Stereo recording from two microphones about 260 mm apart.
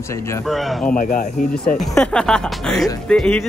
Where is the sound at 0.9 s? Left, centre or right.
Left.